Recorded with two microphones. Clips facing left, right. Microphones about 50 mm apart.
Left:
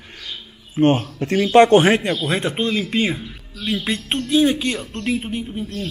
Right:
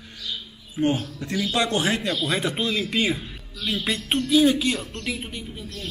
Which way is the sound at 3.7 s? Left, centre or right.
Left.